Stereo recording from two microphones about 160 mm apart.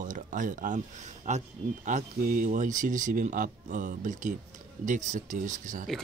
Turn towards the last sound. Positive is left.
turn(degrees=-55)  # may be behind; listen again after turning